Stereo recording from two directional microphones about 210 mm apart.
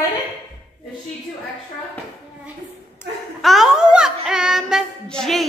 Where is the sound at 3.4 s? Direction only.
Centre (ahead or behind).